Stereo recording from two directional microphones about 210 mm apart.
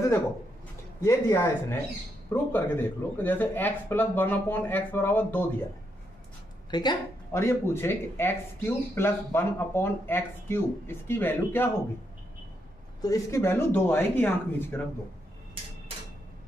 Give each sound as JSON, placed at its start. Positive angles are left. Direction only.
{"t": 1.0, "sound": "speech", "side_deg": 10}
{"t": 6.7, "sound": "speech", "side_deg": 20}
{"t": 13.0, "sound": "speech", "side_deg": 15}